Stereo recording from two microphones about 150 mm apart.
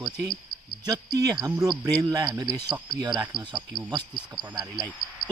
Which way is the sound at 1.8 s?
25° right (ahead or behind).